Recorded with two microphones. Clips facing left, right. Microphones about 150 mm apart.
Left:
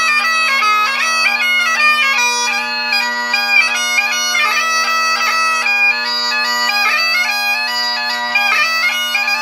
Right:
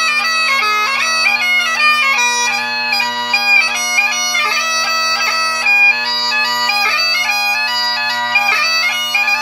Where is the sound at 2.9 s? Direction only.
15° right (ahead or behind).